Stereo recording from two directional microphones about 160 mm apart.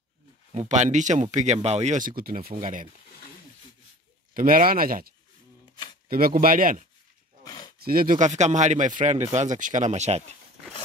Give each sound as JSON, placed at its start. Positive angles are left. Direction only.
{"t": 0.5, "sound": "speech", "side_deg": -45}
{"t": 4.3, "sound": "speech", "side_deg": -60}
{"t": 6.0, "sound": "speech", "side_deg": -65}
{"t": 7.4, "sound": "a sound", "side_deg": 25}
{"t": 7.8, "sound": "speech", "side_deg": -65}